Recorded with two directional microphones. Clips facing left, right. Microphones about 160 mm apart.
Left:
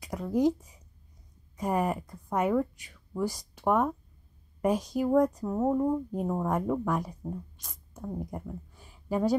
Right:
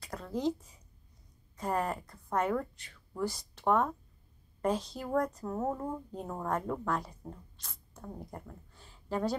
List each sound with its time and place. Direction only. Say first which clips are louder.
0.0 s speech: left 7 dB; 15° left (ahead or behind)
1.6 s speech: left 4 dB; 15° left (ahead or behind)